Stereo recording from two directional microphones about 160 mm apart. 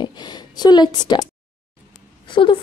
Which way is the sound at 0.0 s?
25° left (ahead or behind).